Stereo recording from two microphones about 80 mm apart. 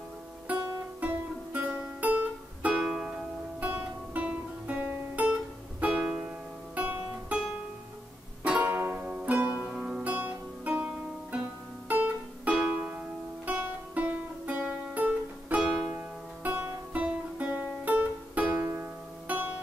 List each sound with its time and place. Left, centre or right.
1.0 s music: centre
2.8 s music: centre
3.6 s music: centre
8.5 s music: right
9.6 s music: centre
10.0 s music: centre
18.5 s music: right
19.2 s music: centre